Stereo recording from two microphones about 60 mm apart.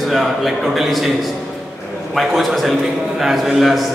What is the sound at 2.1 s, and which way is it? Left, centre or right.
Speech, centre.